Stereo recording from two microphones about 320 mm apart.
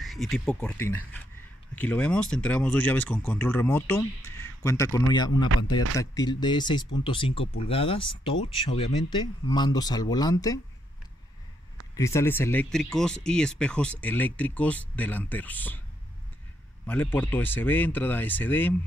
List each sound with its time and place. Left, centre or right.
0.0 s speech: centre
11.9 s speech: centre
16.8 s speech: centre